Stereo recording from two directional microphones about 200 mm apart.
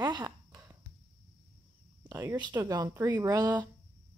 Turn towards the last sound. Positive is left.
turn(degrees=-15)  # may be behind; listen again after turning